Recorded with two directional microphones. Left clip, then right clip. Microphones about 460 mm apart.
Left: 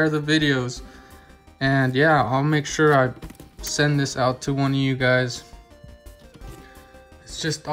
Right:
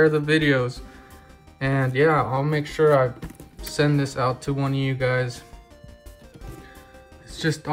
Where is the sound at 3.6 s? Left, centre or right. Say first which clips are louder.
Left 1 dB; centre.